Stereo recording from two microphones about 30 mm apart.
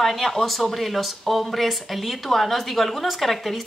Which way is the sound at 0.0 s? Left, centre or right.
Centre.